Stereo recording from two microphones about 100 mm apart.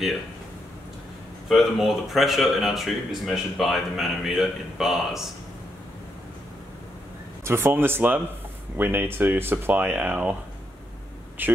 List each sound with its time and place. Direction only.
1.5 s speech: centre (ahead or behind)
7.4 s speech: 25° right (ahead or behind)
11.4 s speech: 20° right (ahead or behind)